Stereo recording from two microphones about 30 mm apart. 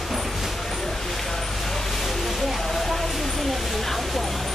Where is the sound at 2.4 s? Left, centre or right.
Centre.